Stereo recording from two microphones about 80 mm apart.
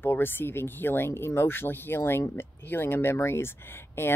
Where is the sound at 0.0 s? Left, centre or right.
Left.